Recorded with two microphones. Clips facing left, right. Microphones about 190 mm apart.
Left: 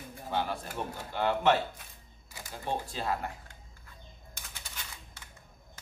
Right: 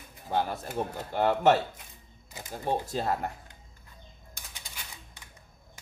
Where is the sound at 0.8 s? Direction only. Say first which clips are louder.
Right 6 dB; 40° right (ahead or behind).